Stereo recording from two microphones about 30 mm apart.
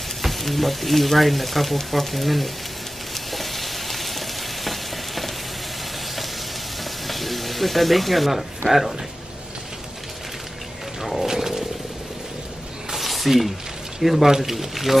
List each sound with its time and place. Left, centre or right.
0.2 s speech: centre
3.3 s frying: centre
6.8 s a sound: centre
11.0 s roaring cats: centre
11.2 s wild animals: centre
12.9 s a sound: centre
14.2 s speech: centre
14.5 s speech: centre